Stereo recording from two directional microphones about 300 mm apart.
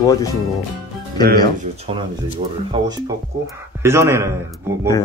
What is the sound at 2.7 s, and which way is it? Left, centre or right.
A man's voice, centre.